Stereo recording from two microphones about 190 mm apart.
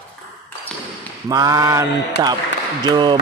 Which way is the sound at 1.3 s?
20° right (ahead or behind).